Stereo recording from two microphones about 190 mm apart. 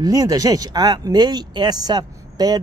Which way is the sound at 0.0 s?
20° right (ahead or behind).